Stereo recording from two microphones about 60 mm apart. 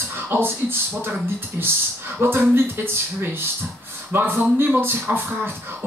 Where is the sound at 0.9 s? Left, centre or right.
Right.